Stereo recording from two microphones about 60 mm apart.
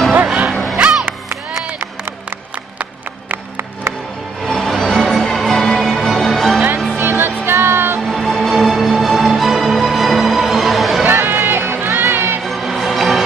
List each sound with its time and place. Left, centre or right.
0.5 s music: centre
0.7 s music: centre
4.5 s music: centre
7.0 s music: right
8.0 s music: centre
11.1 s music: right
12.4 s music: centre